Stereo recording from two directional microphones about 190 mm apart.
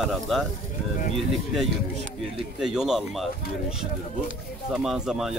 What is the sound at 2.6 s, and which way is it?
Speech, centre (ahead or behind).